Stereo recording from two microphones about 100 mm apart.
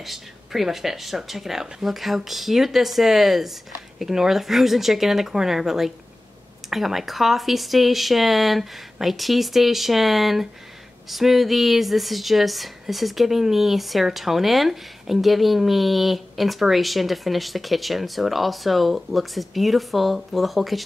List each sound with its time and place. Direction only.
0.0 s a woman's voice: centre (ahead or behind)